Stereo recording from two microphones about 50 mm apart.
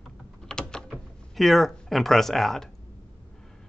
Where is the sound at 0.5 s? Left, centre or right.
Centre.